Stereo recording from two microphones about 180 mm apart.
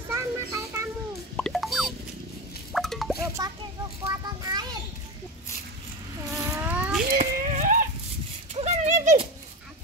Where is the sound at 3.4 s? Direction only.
20° right (ahead or behind).